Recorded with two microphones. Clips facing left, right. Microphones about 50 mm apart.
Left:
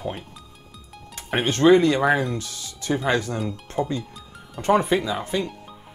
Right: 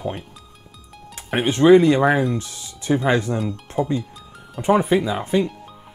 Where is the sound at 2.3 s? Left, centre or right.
Right.